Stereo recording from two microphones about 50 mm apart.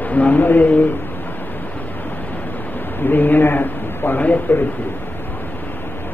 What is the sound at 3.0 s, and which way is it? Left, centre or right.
A man's voice, left.